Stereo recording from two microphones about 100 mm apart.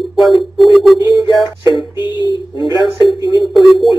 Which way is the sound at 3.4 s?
Centre (ahead or behind).